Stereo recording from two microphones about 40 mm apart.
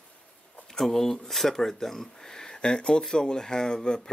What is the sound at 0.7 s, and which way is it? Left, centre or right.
Speech, centre.